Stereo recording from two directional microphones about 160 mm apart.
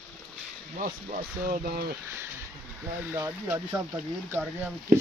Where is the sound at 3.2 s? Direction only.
15° right (ahead or behind).